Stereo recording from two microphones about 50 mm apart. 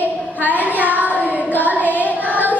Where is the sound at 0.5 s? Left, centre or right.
Right.